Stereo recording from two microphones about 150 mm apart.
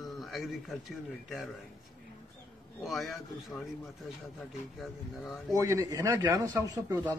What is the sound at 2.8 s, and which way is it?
Speech, centre (ahead or behind).